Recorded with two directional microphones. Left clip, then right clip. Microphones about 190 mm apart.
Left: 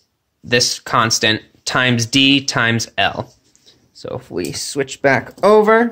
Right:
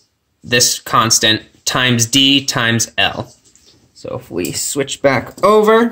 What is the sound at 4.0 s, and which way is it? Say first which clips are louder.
Speech: right 2 dB; 20° left (ahead or behind).